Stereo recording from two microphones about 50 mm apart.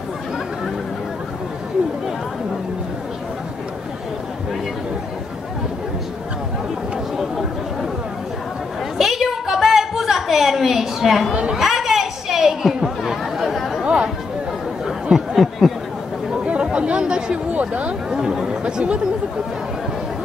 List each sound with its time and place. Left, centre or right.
8.9 s a sound: centre
11.5 s chatter: centre
13.8 s chatter: centre
15.1 s chatter: centre
16.7 s chatter: right
17.6 s speech: right
18.1 s speech: centre